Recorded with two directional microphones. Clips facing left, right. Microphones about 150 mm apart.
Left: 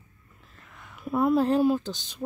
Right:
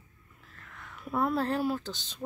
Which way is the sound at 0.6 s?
15° left (ahead or behind).